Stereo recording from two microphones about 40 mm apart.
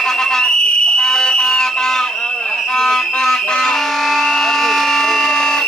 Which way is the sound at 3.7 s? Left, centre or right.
Centre.